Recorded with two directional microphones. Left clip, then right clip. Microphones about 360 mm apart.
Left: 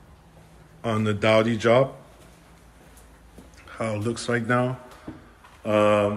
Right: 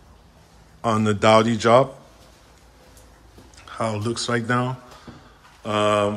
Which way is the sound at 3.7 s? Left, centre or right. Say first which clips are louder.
Right 3 dB; centre.